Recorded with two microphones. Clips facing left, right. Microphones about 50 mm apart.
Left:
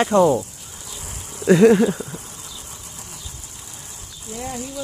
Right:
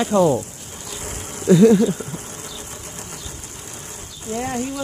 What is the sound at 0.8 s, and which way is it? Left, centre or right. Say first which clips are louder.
Insect: right 5 dB; right.